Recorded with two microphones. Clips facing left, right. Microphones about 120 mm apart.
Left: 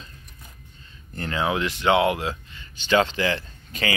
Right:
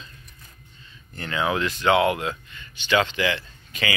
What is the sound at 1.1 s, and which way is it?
Speech, 35° left (ahead or behind).